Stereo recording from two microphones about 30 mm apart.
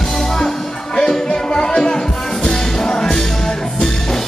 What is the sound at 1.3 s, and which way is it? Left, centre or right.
Music, left.